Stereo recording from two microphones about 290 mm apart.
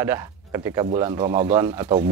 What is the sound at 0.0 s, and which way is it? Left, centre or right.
Speech, centre.